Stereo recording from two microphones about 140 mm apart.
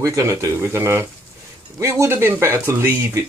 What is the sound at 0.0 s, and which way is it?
Speech, 25° right (ahead or behind).